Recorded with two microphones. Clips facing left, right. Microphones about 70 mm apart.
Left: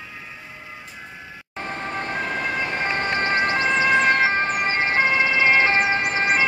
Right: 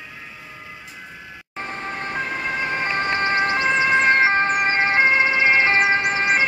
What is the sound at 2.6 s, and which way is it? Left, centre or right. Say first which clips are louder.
Ambulance: right 1 dB; right.